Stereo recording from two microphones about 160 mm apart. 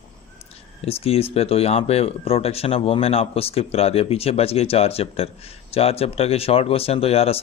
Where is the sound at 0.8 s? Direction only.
40° left (ahead or behind).